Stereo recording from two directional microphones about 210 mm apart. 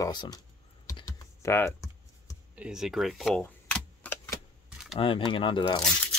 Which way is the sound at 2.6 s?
5° right (ahead or behind).